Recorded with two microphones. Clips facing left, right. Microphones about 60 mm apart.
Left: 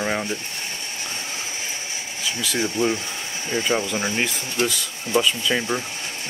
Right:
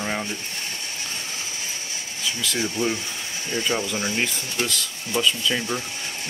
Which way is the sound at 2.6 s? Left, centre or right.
Centre.